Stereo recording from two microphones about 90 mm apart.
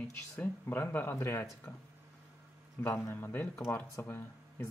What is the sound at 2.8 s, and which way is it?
Speech, 25° left (ahead or behind).